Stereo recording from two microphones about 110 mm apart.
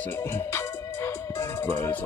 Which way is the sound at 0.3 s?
25° left (ahead or behind).